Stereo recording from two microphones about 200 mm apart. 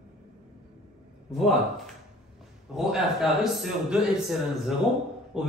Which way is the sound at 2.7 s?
Centre (ahead or behind).